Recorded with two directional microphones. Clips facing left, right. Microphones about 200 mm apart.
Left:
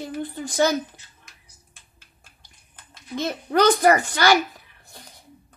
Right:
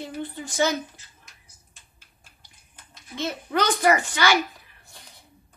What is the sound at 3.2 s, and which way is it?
Speech, 40° left (ahead or behind).